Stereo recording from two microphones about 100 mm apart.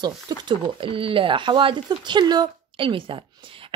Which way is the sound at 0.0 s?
45° right (ahead or behind).